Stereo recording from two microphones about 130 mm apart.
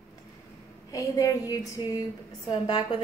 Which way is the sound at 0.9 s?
25° left (ahead or behind).